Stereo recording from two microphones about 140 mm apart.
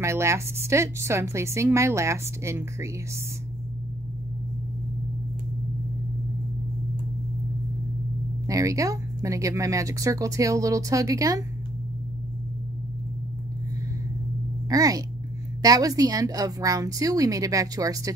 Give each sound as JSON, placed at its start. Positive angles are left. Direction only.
{"t": 0.0, "sound": "speech", "side_deg": -20}
{"t": 8.5, "sound": "speech", "side_deg": -25}
{"t": 14.7, "sound": "speech", "side_deg": -25}